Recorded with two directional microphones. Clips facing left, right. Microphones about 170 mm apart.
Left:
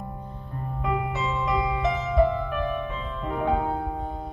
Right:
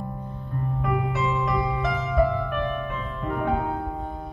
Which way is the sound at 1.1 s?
20° left (ahead or behind).